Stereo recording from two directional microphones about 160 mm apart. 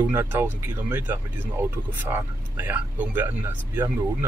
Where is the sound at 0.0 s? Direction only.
15° right (ahead or behind).